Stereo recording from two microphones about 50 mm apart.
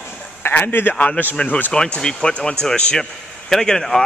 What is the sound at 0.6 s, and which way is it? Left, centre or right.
Speech, left.